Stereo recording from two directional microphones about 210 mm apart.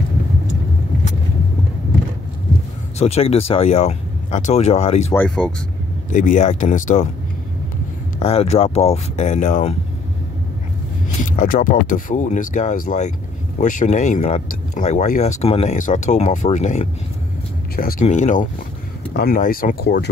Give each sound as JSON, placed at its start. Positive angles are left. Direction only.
{"t": 3.0, "sound": "speech", "side_deg": 30}
{"t": 5.1, "sound": "speech", "side_deg": 5}
{"t": 6.1, "sound": "speech", "side_deg": 35}
{"t": 8.2, "sound": "speech", "side_deg": 30}
{"t": 11.2, "sound": "speech", "side_deg": 40}